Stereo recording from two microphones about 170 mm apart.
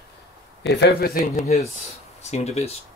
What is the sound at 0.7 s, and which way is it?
Speech, 80° left.